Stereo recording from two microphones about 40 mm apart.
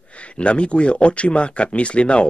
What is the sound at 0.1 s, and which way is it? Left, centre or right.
Speech, left.